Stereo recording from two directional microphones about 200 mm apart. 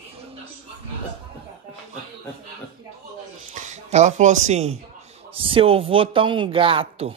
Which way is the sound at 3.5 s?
35° right (ahead or behind).